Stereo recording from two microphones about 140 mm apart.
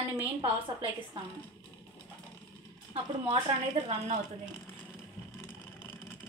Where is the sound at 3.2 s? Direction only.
45° right (ahead or behind).